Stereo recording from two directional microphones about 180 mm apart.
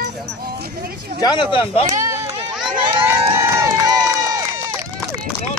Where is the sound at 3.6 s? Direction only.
20° right (ahead or behind).